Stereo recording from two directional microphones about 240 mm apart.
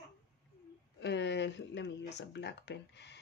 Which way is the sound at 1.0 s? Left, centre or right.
Left.